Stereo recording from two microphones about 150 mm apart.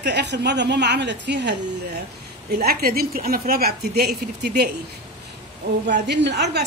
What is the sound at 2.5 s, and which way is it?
A woman's voice, 90° right.